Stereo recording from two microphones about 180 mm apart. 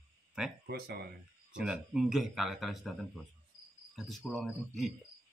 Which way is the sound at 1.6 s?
5° right (ahead or behind).